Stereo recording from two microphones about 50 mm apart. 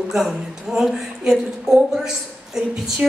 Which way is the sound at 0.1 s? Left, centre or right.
Centre.